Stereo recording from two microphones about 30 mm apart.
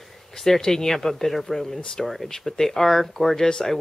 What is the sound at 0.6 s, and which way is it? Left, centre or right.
Speech, centre.